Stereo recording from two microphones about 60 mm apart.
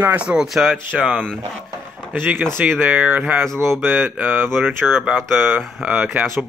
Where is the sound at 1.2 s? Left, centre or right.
Centre.